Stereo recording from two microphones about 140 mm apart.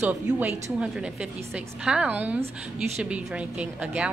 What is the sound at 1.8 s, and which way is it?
A woman's voice, 10° right (ahead or behind).